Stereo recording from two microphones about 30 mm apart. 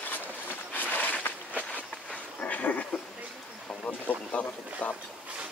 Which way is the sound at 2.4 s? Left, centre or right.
Left.